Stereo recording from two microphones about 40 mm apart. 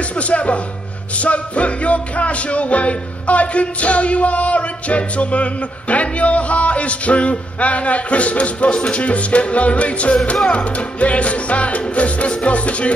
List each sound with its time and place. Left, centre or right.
0.1 s speech: left
1.1 s music: left
10.3 s music: centre
10.6 s music: left